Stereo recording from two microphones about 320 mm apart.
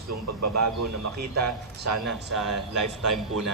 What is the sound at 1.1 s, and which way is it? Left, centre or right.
Speech, right.